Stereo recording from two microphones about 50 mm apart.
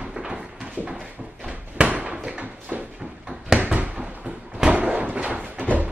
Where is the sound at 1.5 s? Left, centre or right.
Right.